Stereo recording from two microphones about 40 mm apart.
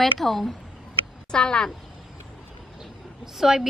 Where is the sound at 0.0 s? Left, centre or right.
Centre.